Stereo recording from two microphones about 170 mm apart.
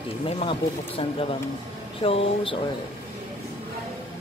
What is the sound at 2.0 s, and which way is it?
Speech, 35° left (ahead or behind).